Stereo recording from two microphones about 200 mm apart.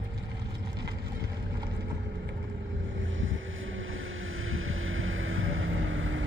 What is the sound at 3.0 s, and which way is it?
Boat, 75° right (ahead or behind).